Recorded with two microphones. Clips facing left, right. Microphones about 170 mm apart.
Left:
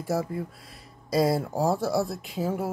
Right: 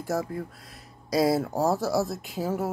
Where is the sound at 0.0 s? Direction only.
Centre (ahead or behind).